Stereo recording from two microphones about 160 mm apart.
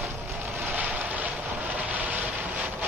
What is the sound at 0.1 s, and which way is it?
Vehicle, 15° right (ahead or behind).